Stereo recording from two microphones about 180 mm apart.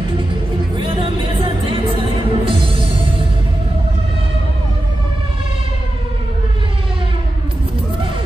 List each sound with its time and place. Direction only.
0.7 s music: 30° right (ahead or behind)